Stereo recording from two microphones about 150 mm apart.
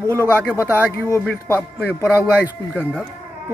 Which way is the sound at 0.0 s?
15° left (ahead or behind).